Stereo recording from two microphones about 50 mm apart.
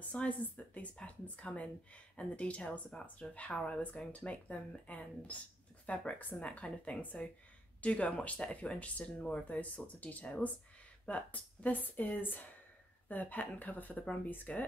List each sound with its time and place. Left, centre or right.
0.1 s speech: left